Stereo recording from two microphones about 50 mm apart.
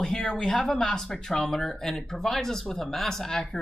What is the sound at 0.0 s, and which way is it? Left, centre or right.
Speech, centre.